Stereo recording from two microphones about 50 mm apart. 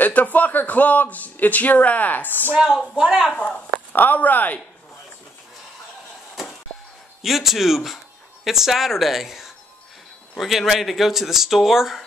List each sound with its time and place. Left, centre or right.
0.0 s a man's voice: left
3.0 s speech: centre
3.9 s a man's voice: left
7.2 s speech: centre